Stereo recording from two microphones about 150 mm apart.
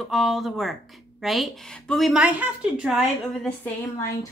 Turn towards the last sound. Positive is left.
turn(degrees=20)  # may be behind; listen again after turning